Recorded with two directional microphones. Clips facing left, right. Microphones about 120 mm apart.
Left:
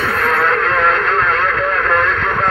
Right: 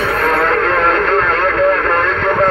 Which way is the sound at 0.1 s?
40° right (ahead or behind).